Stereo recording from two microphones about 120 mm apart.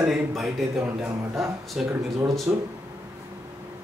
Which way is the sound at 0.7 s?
20° right (ahead or behind).